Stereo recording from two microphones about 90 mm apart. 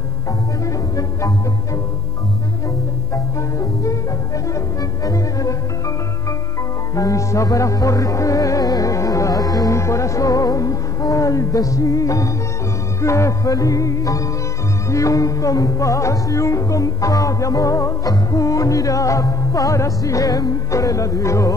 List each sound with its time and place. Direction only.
0.7 s music: 40° left (ahead or behind)
3.3 s music: 35° left (ahead or behind)
7.0 s music: 35° left (ahead or behind)